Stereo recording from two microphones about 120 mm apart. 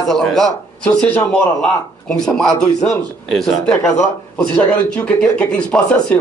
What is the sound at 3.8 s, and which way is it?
Speech, 25° left (ahead or behind).